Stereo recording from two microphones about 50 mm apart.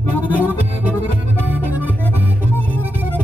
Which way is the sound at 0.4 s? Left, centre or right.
Right.